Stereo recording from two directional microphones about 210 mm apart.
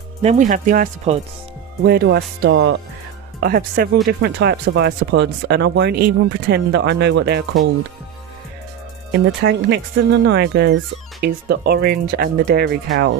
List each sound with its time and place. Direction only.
0.2 s speech: 35° right (ahead or behind)
1.9 s speech: 50° right (ahead or behind)
2.5 s speech: 70° right (ahead or behind)
3.4 s speech: 45° right (ahead or behind)
9.1 s speech: 55° right (ahead or behind)